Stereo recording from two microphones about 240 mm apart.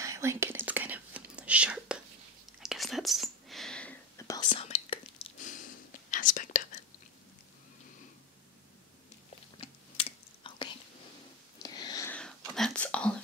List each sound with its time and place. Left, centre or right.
0.0 s whispering: centre; by 6.8 s left
9.6 s typing: left
11.6 s whispering: centre